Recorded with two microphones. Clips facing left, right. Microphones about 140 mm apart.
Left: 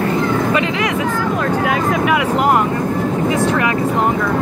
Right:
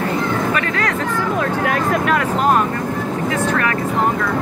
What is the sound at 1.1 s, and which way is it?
Vehicle, centre (ahead or behind).